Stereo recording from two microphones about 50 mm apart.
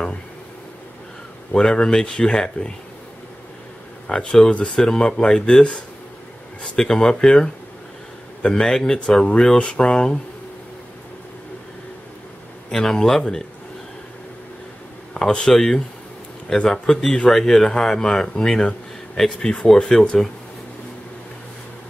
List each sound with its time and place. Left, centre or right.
1.5 s speech: centre
4.1 s a man's voice: centre
12.7 s a man's voice: centre
15.1 s speech: centre